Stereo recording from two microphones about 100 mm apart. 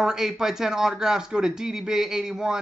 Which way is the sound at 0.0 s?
5° right (ahead or behind).